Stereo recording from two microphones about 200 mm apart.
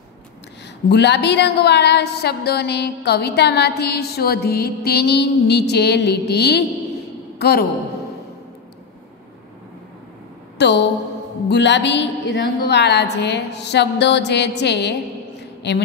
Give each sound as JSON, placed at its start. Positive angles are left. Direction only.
{"t": 0.8, "sound": "a woman's voice", "side_deg": 60}
{"t": 10.6, "sound": "a woman's voice", "side_deg": 60}